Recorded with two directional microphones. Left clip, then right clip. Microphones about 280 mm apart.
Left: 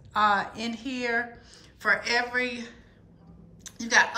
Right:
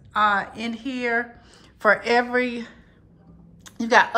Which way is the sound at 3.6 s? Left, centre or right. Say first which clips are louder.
Right 5 dB; centre.